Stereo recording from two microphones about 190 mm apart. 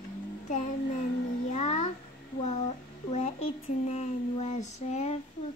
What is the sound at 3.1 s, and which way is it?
Speech, 35° left (ahead or behind).